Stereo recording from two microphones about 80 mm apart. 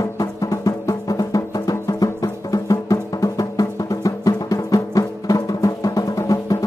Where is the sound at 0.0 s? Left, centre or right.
Left.